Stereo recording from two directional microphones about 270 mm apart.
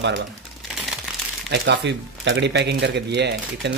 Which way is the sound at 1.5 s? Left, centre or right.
Right.